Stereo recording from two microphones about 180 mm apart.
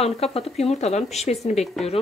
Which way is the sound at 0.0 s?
35° left (ahead or behind).